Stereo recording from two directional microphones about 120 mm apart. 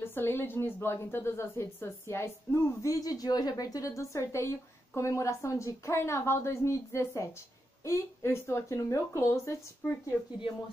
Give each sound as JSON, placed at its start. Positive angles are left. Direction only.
{"t": 0.0, "sound": "a woman's voice", "side_deg": 20}